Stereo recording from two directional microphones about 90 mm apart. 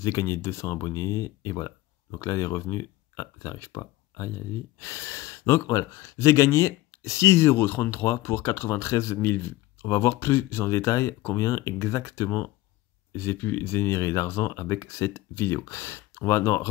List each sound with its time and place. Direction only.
0.0 s speech: 35° left (ahead or behind)